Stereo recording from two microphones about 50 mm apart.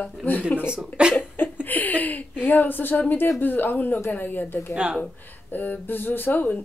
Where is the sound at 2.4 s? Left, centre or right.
Left.